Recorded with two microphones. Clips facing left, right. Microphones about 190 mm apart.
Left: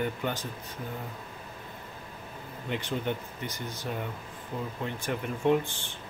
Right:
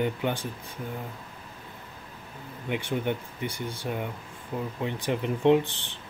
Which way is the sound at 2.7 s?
10° right (ahead or behind).